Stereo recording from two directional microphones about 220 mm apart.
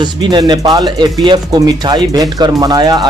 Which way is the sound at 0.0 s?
20° right (ahead or behind).